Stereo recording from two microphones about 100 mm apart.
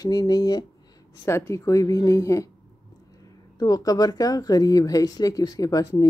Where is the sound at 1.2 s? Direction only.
30° left (ahead or behind).